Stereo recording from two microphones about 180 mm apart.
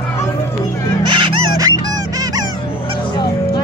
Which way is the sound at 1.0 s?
25° right (ahead or behind).